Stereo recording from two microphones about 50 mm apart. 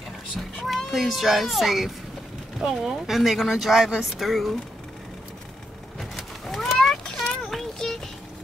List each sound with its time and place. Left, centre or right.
0.6 s speech: centre
5.9 s a sound: centre
7.4 s child singing: centre